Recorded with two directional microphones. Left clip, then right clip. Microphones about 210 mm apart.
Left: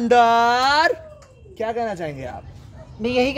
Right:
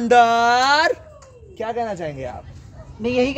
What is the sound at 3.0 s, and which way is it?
Speech, 45° left (ahead or behind).